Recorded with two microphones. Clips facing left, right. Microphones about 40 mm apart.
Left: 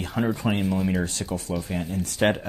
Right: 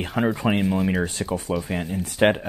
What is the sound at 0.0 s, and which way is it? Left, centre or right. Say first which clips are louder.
Speech: right 3 dB; right.